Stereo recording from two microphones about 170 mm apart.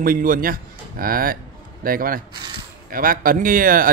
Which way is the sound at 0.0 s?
55° right (ahead or behind).